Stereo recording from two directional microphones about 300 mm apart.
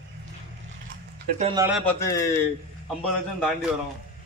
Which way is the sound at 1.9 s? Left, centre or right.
Centre.